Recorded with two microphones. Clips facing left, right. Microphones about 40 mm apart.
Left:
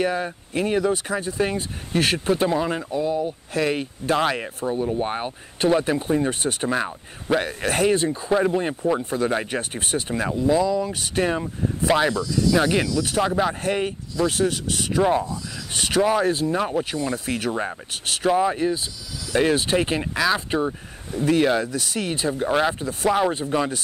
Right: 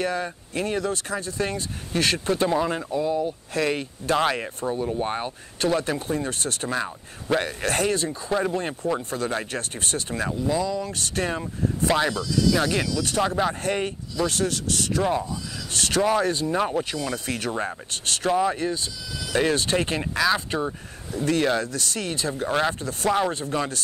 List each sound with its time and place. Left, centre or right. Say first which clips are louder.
0.0 s speech: left 3 dB; centre
2.0 s speech: left 2 dB; centre
7.2 s speech: left 2 dB; centre
7.9 s speech: left 4 dB; left
12.1 s speech: left 1 dB; left
12.5 s speech: left 3 dB; centre